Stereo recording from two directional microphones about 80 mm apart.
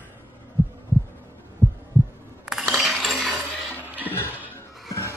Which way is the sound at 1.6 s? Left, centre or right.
Right.